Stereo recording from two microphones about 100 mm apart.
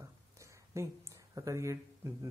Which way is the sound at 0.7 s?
30° right (ahead or behind).